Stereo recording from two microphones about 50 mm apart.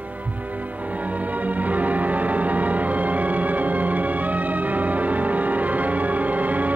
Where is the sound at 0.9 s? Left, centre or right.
Right.